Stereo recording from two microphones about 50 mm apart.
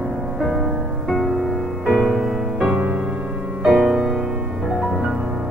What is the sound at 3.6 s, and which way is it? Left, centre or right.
Music, centre.